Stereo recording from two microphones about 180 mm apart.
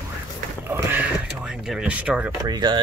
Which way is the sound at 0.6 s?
10° right (ahead or behind).